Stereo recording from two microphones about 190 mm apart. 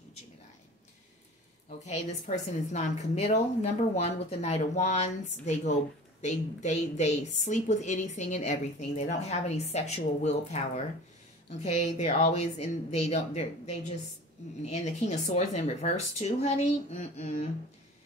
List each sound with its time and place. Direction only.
1.9 s a woman's voice: 35° left (ahead or behind)
11.6 s a woman's voice: 35° left (ahead or behind)